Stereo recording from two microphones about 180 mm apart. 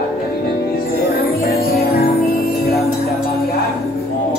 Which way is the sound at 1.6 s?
60° left (ahead or behind).